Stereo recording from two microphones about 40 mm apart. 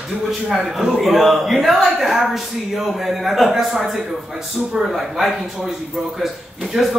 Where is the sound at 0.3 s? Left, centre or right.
Centre.